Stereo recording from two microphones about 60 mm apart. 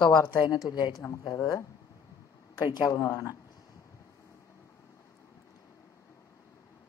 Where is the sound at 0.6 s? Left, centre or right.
Left.